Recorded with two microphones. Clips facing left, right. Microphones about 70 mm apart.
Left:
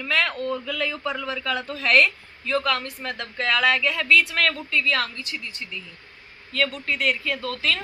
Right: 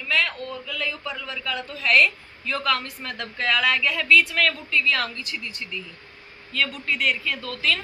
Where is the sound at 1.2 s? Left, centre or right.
Left.